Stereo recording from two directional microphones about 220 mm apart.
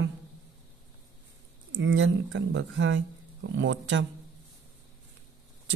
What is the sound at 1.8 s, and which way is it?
Speech, 55° right (ahead or behind).